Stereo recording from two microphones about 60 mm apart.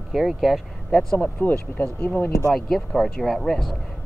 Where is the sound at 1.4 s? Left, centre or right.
Left.